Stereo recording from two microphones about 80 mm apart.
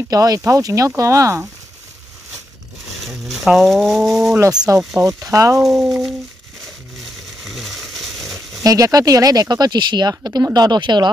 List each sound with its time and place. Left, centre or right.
0.1 s speech: right
3.1 s speech: centre
4.7 s speech: right
5.6 s speech: centre
7.4 s a sound: centre
8.6 s speech: right